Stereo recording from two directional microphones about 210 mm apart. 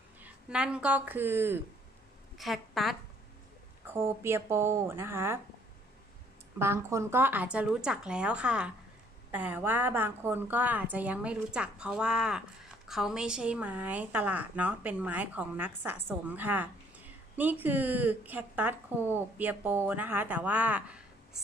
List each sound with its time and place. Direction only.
0.2 s speech: 5° right (ahead or behind)
2.3 s a woman's voice: centre (ahead or behind)
3.8 s a woman's voice: 10° right (ahead or behind)
6.6 s a woman's voice: 10° right (ahead or behind)